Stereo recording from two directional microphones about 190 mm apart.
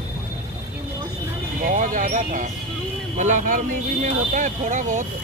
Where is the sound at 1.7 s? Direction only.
40° right (ahead or behind).